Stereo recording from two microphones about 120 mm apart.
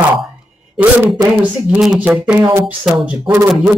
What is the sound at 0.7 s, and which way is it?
Speech, 15° right (ahead or behind).